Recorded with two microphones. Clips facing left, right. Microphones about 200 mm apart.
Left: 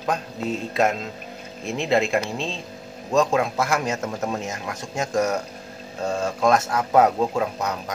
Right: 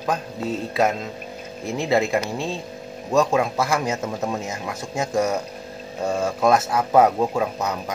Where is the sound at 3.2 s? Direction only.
5° right (ahead or behind).